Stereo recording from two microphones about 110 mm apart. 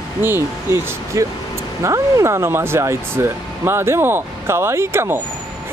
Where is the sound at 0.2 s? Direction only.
20° right (ahead or behind).